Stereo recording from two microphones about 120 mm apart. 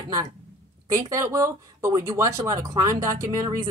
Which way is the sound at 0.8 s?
25° right (ahead or behind).